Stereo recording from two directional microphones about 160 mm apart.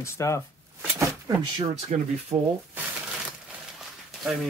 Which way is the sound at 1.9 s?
50° right (ahead or behind).